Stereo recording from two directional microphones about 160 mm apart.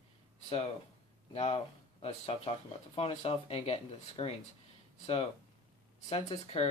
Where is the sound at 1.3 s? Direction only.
40° left (ahead or behind).